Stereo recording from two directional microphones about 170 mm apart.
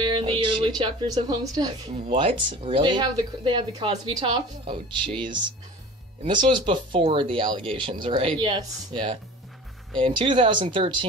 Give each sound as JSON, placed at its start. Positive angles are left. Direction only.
{"t": 0.0, "sound": "music", "side_deg": -30}
{"t": 1.4, "sound": "speech", "side_deg": -20}